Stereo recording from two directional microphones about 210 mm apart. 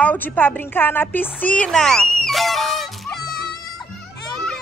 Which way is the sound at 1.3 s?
5° left (ahead or behind).